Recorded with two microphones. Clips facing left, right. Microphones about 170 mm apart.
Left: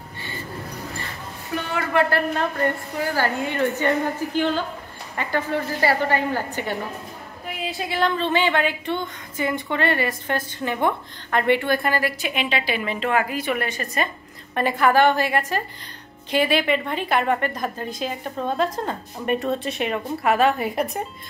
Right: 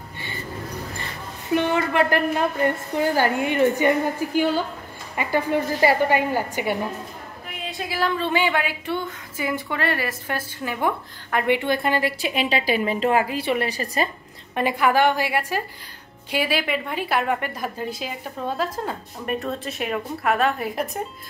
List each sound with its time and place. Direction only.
1.5 s a woman's voice: 20° right (ahead or behind)
7.4 s a woman's voice: centre (ahead or behind); by 14.0 s 30° right (ahead or behind)
14.5 s a woman's voice: 10° right (ahead or behind)